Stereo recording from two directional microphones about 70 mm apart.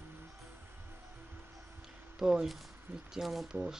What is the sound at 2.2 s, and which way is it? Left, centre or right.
Speech, centre.